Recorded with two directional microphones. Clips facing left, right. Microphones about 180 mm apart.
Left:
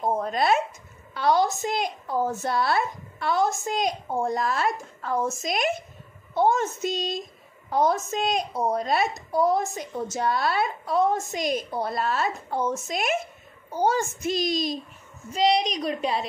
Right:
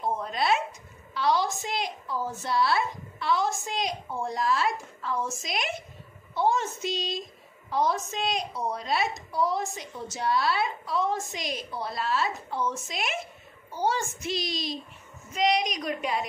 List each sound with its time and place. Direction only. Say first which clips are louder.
0.0 s dog: left 4 dB; 45° left (ahead or behind)
1.1 s a woman's voice: left 4 dB; 50° left (ahead or behind)
15.3 s a woman's voice: left 3 dB; 30° left (ahead or behind)